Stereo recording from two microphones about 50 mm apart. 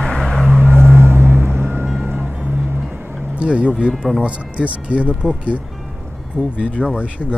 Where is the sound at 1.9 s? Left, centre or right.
Right.